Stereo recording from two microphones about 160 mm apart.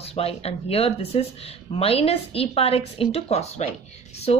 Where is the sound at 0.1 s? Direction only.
40° left (ahead or behind).